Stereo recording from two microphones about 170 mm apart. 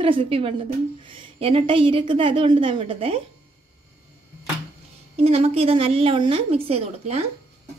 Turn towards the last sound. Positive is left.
turn(degrees=-35)  # may be behind; listen again after turning